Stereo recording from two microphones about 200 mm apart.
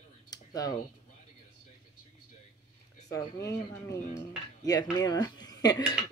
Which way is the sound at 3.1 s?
15° left (ahead or behind).